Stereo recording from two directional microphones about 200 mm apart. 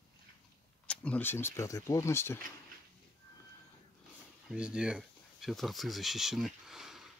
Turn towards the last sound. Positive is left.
turn(degrees=0)  # may be behind; listen again after turning